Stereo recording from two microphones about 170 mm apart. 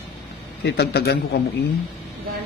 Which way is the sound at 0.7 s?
70° left (ahead or behind).